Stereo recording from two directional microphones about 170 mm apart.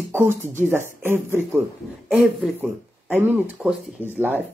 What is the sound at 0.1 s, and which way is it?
Speech, 15° right (ahead or behind).